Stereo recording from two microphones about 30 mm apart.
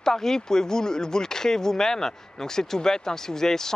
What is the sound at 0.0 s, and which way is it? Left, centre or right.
Speech, centre.